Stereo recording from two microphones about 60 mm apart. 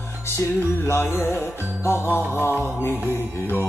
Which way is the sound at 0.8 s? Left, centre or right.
Left.